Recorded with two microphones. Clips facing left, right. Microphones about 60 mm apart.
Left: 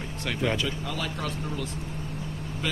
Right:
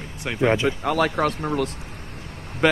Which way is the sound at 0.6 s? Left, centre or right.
Right.